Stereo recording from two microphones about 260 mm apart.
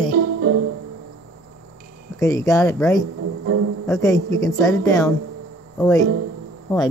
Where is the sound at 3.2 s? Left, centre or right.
Right.